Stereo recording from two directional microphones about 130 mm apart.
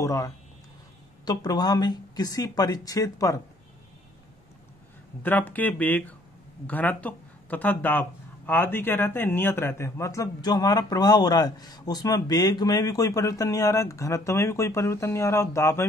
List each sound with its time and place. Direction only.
0.0 s speech: 25° left (ahead or behind)
5.2 s speech: 15° left (ahead or behind)